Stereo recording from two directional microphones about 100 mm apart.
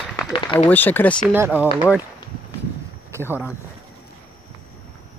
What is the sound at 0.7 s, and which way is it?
Speech, 20° left (ahead or behind).